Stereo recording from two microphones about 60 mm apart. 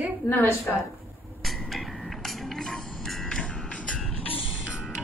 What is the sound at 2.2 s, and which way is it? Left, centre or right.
Music, centre.